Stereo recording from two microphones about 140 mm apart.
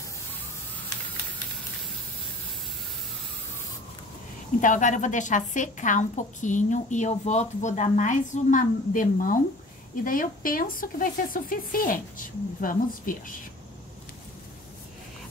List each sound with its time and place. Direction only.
4.6 s a woman's voice: 65° left (ahead or behind)